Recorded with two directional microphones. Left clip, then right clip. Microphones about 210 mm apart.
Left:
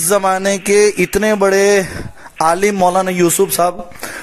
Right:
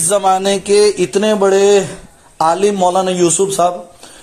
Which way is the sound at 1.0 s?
30° left (ahead or behind).